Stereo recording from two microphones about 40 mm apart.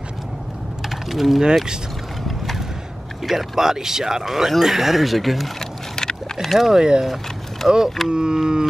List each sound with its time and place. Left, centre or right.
0.8 s mechanisms: centre
1.4 s speech: centre
3.3 s speech: centre
5.6 s vehicle: centre
6.4 s speech: centre
6.7 s speech: centre
7.6 s speech: centre
8.1 s speech: centre